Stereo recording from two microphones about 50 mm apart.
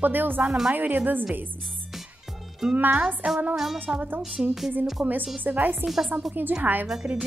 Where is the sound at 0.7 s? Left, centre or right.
Right.